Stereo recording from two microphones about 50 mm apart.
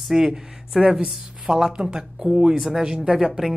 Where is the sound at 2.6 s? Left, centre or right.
Centre.